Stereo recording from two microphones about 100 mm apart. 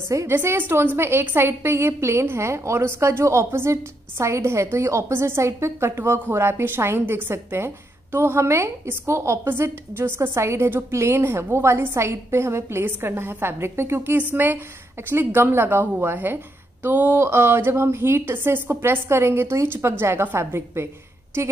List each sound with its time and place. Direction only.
0.1 s a woman's voice: 30° right (ahead or behind)